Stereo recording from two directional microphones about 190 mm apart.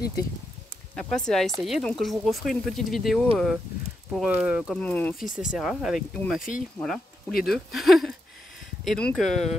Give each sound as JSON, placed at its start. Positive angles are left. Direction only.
{"t": 0.9, "sound": "speech", "side_deg": 5}
{"t": 4.8, "sound": "speech", "side_deg": 10}
{"t": 5.2, "sound": "speech", "side_deg": 45}
{"t": 5.5, "sound": "speech", "side_deg": -5}